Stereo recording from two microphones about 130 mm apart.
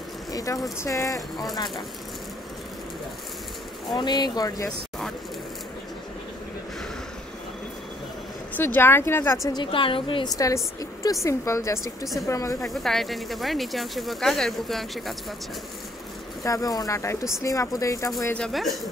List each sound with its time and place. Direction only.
0.3 s a sound: 25° left (ahead or behind)
0.7 s speech: 25° left (ahead or behind)
3.9 s a woman's voice: 35° left (ahead or behind)
4.6 s a sound: 5° left (ahead or behind)
8.5 s speech: 15° left (ahead or behind)
9.5 s a woman's voice: 40° left (ahead or behind)
10.3 s speech: 25° left (ahead or behind)
12.8 s speech: centre (ahead or behind)
16.4 s speech: 25° left (ahead or behind)
18.3 s speech: 5° left (ahead or behind)